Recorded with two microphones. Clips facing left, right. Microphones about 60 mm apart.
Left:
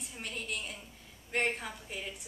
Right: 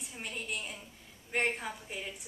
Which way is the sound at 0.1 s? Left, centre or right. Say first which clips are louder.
Even; centre.